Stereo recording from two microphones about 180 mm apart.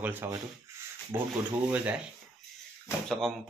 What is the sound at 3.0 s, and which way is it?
Speech, centre (ahead or behind).